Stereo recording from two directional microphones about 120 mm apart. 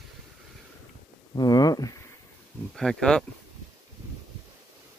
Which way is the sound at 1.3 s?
30° left (ahead or behind).